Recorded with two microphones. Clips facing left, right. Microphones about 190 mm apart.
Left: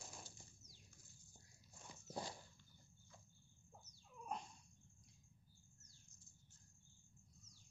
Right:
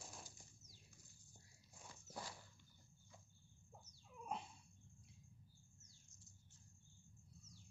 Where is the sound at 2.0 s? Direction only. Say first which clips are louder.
Left 5 dB; 25° left (ahead or behind).